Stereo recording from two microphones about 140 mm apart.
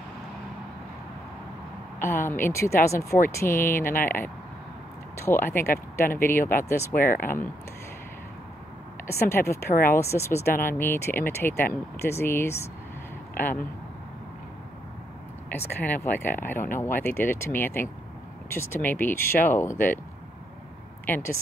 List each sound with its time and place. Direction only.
2.0 s speech: 15° left (ahead or behind)
7.0 s speech: 80° left
9.0 s speech: 15° left (ahead or behind)
15.8 s speech: 15° left (ahead or behind)
21.0 s a sound: 15° left (ahead or behind)